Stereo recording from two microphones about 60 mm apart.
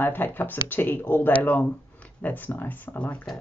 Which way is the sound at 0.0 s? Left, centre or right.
Left.